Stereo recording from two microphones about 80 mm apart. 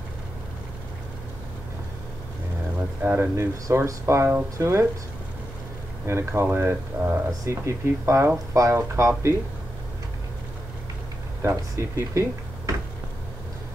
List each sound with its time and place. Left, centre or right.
3.0 s speech: right
3.3 s speech: right
6.0 s speech: right
7.2 s speech: right
11.7 s speech: right